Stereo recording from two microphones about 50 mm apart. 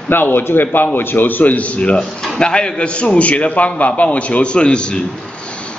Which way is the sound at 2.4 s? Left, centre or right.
Centre.